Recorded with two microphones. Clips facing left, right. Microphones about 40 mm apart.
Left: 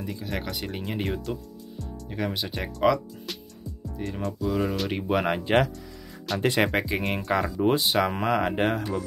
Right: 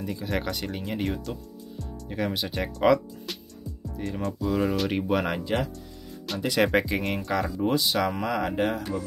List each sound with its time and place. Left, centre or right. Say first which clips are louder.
0.0 s speech: right 3 dB; centre
5.1 s speech: left 3 dB; centre
6.3 s music: left 4 dB; centre
6.6 s speech: right 2 dB; centre
7.6 s speech: left 2 dB; left